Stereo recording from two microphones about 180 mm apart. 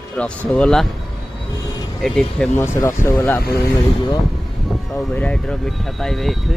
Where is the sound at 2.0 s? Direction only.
5° left (ahead or behind).